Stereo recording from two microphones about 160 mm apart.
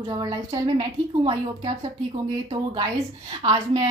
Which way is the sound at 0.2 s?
30° right (ahead or behind).